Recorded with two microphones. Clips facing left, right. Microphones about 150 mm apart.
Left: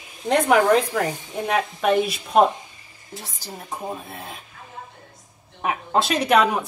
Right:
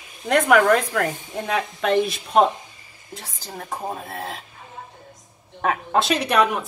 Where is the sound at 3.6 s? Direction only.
50° right (ahead or behind).